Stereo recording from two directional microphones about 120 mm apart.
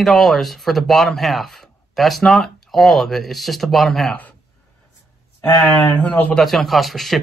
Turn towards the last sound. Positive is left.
turn(degrees=0)  # may be behind; listen again after turning